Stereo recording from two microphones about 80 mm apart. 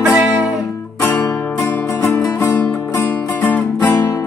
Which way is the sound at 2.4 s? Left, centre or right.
Left.